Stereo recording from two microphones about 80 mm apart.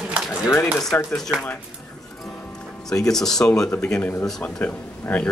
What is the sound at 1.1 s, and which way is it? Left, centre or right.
Speech, centre.